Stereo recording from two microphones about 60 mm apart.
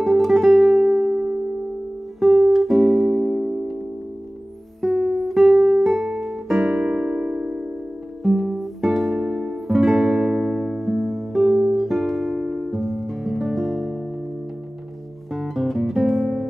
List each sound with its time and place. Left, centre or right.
0.0 s music: centre
0.7 s music: centre
2.1 s music: centre
4.8 s music: centre; by 7.5 s right
8.2 s music: centre
15.3 s guitar: centre